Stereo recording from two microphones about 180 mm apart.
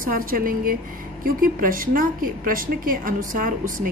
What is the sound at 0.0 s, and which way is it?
A woman's voice, 50° right (ahead or behind).